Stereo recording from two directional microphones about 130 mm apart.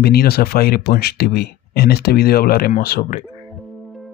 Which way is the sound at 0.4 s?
90° left.